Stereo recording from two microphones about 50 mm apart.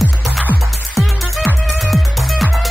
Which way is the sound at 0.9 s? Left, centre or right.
Centre.